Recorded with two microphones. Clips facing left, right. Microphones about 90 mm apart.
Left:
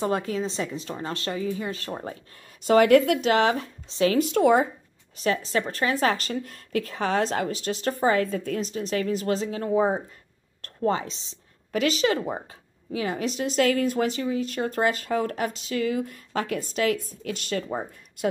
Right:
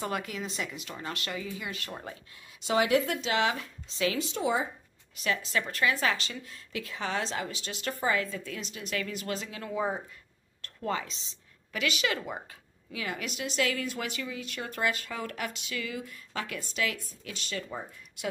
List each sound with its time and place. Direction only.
0.0 s a woman's voice: 30° left (ahead or behind)
2.6 s speech: 50° left (ahead or behind)
4.2 s speech: 60° left (ahead or behind)
5.1 s a woman's voice: 35° left (ahead or behind)